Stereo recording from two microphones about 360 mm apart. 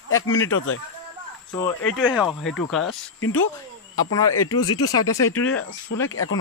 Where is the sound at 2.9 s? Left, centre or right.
Left.